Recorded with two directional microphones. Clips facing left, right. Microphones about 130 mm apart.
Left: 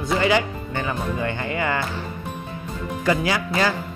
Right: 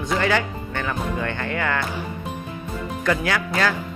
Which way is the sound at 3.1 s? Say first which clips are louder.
Left 1 dB; 5° left (ahead or behind).